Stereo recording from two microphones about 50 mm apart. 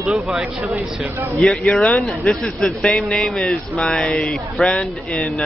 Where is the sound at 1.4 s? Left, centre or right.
Centre.